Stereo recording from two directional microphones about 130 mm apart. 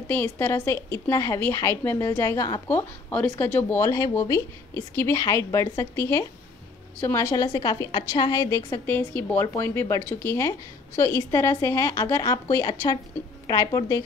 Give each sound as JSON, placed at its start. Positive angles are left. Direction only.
{"t": 0.1, "sound": "a woman's voice", "side_deg": 15}